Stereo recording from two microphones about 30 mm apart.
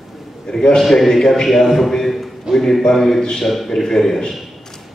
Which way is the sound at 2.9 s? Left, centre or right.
Centre.